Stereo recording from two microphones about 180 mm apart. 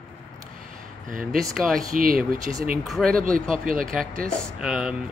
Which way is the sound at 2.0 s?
55° right (ahead or behind).